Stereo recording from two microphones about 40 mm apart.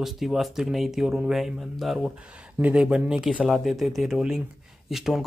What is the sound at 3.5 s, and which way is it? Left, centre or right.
Speech, centre.